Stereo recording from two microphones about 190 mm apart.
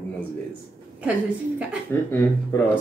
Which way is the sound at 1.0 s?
5° right (ahead or behind).